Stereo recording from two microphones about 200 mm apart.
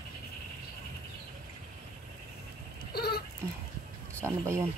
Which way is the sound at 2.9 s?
50° left (ahead or behind).